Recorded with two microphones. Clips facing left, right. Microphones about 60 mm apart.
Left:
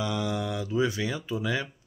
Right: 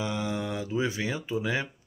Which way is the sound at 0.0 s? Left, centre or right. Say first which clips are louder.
Left 1 dB; right.